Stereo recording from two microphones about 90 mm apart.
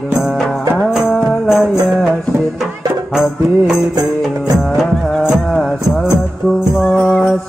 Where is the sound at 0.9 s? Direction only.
5° right (ahead or behind).